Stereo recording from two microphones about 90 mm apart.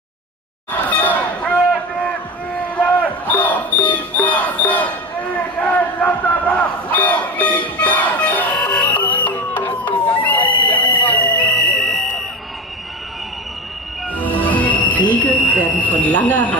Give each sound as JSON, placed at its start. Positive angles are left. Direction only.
{"t": 0.8, "sound": "a sound", "side_deg": 15}
{"t": 2.5, "sound": "music", "side_deg": 15}
{"t": 14.1, "sound": "music", "side_deg": 15}
{"t": 15.2, "sound": "speech", "side_deg": 15}